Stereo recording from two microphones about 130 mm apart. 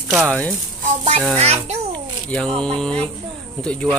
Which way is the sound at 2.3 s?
5° left (ahead or behind).